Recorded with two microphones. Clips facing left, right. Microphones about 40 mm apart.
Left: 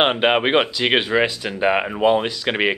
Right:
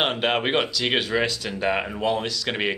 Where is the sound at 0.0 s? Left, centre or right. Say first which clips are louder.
Left 6 dB; left.